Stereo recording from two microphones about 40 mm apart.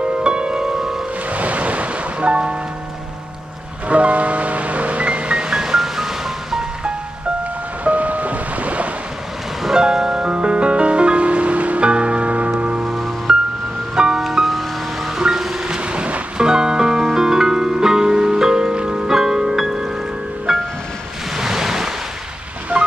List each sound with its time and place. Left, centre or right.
0.0 s music: right
1.3 s music: right
3.9 s music: right; by 6.6 s centre
7.8 s ocean: right
9.6 s music: centre; by 12.8 s right
13.3 s music: centre
14.1 s music: centre
15.1 s music: centre
17.0 s music: centre
20.5 s music: centre
21.4 s waves: centre